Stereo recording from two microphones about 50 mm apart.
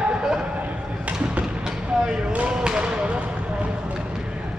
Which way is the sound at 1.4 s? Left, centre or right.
Centre.